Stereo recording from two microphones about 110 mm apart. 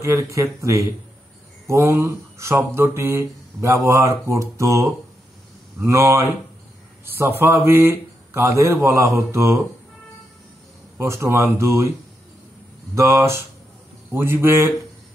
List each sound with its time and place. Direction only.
0.0 s mantra: 30° right (ahead or behind)
11.0 s mantra: 25° right (ahead or behind)
12.9 s mantra: 30° right (ahead or behind)